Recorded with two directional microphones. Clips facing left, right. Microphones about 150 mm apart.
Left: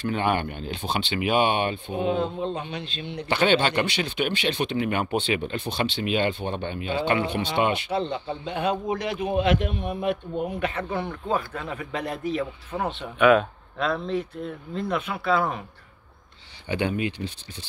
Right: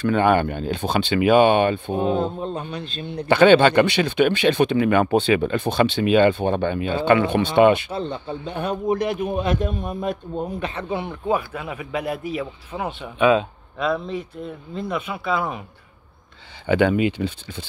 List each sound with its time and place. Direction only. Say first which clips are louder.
0.1 s speech: right 7 dB; 50° right (ahead or behind); by 10.8 s 35° right (ahead or behind)
10.9 s a man's voice: right 4 dB; 15° right (ahead or behind)
16.7 s speech: right 8 dB; 90° right